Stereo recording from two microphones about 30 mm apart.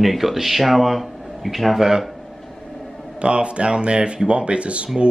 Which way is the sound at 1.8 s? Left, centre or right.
Centre.